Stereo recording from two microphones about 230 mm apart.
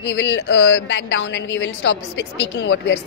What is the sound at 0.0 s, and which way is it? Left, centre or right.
A woman's voice, left.